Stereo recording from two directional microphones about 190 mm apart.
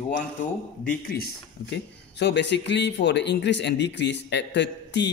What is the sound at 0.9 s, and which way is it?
Speech, 50° left (ahead or behind).